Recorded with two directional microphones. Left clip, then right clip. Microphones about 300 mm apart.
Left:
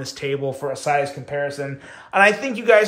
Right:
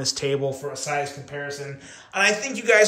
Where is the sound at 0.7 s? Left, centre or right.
Centre.